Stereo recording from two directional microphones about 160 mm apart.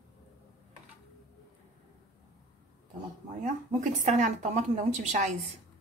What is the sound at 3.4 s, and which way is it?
A woman's voice, 50° right (ahead or behind).